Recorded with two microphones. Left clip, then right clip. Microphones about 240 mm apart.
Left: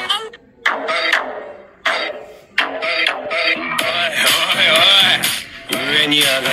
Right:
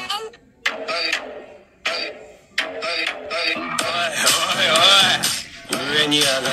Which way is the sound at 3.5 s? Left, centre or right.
Centre.